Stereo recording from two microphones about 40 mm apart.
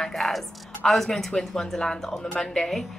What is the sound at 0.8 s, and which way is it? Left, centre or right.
A woman's voice, centre.